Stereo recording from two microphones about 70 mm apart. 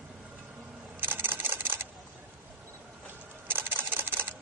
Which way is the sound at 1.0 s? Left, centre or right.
Right.